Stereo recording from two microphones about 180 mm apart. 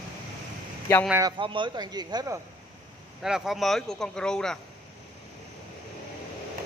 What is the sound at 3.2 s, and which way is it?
Speech, centre (ahead or behind).